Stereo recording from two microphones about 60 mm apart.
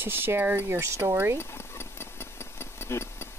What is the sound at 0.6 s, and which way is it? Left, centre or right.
Speech, right.